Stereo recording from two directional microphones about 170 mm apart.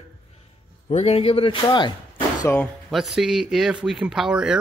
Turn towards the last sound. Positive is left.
turn(degrees=-5)  # may be behind; listen again after turning